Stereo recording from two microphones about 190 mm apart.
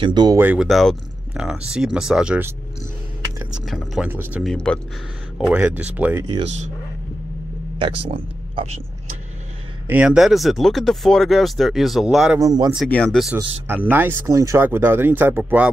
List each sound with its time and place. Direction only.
0.0 s speech: 20° right (ahead or behind)
0.4 s speech: 5° right (ahead or behind)
3.6 s speech: centre (ahead or behind)
5.5 s speech: 10° right (ahead or behind)
7.8 s speech: 30° right (ahead or behind)
9.8 s speech: 5° right (ahead or behind)
12.4 s speech: 20° right (ahead or behind)
12.7 s speech: 5° left (ahead or behind)
13.8 s speech: 10° right (ahead or behind)